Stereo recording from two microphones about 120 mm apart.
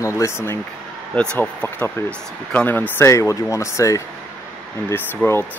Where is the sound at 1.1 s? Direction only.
10° left (ahead or behind).